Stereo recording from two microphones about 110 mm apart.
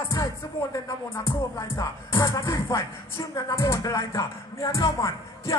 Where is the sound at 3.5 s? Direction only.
25° left (ahead or behind).